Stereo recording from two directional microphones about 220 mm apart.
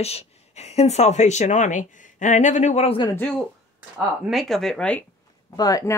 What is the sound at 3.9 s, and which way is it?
Speech, centre (ahead or behind).